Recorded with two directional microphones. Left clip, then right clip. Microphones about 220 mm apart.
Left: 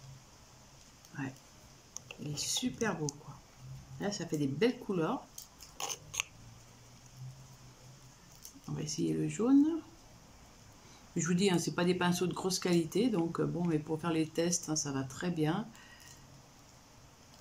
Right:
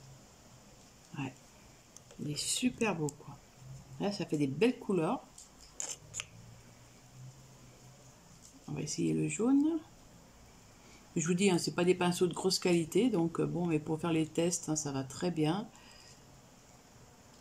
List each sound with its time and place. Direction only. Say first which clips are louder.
1.1 s a sound: even; 10° right (ahead or behind)
2.0 s a sound: even; 15° left (ahead or behind)
2.5 s speech: right 2 dB; 15° right (ahead or behind)
4.0 s speech: right 2 dB; 10° right (ahead or behind)
5.8 s biting: left 5 dB; 15° left (ahead or behind)
8.7 s speech: right 1 dB; 5° right (ahead or behind)
11.1 s speech: right 1 dB; 5° right (ahead or behind)